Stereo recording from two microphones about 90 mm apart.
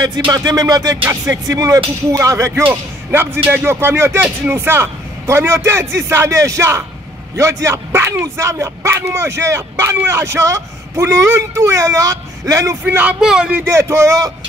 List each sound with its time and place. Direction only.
0.3 s music: 45° right (ahead or behind)
1.2 s speech: 40° right (ahead or behind)
2.6 s speech: 25° right (ahead or behind)
12.8 s speech: 15° right (ahead or behind)
13.7 s speech: 30° right (ahead or behind)